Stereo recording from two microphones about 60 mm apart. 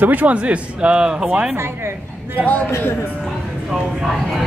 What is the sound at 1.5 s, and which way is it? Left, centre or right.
Speech, right.